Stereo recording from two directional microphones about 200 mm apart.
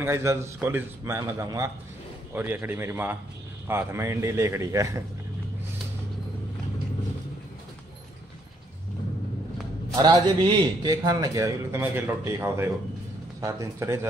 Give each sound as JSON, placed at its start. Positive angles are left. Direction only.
{"t": 0.0, "sound": "a man's voice", "side_deg": -15}
{"t": 9.9, "sound": "a man's voice", "side_deg": -20}